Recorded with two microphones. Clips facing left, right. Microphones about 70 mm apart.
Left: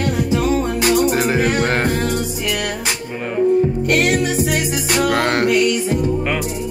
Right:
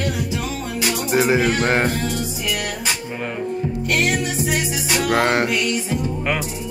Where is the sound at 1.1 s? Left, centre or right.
Centre.